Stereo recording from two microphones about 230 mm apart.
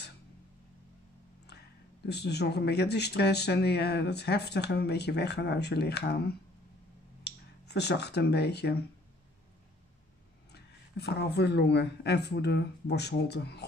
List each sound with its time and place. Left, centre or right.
2.0 s speech: left
10.5 s speech: left